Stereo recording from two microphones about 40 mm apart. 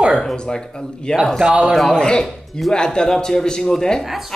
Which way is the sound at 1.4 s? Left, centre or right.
Right.